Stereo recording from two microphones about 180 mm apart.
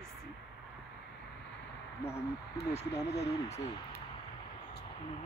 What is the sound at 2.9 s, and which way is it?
Speech, 65° left (ahead or behind).